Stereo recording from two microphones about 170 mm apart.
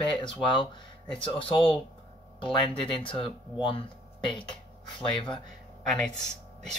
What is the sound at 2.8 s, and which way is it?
Speech, 30° left (ahead or behind).